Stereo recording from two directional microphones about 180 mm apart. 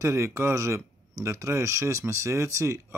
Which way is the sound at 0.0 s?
15° right (ahead or behind).